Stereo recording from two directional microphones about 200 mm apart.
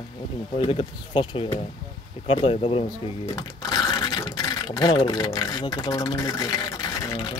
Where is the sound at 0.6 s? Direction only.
25° left (ahead or behind).